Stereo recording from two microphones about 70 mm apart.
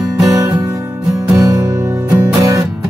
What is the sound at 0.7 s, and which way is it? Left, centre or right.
Music, right.